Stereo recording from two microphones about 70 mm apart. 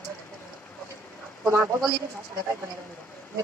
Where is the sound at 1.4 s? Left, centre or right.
Right.